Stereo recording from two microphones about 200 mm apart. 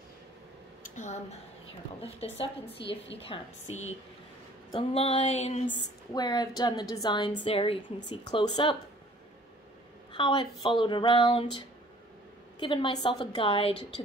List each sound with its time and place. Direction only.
0.8 s a sound: 35° left (ahead or behind)
2.0 s a woman's voice: 30° left (ahead or behind)
2.8 s a woman's voice: 60° left (ahead or behind)
3.3 s a woman's voice: 30° left (ahead or behind)
4.7 s a woman's voice: 30° left (ahead or behind)
6.1 s a woman's voice: 20° left (ahead or behind)
10.1 s a woman's voice: 25° left (ahead or behind)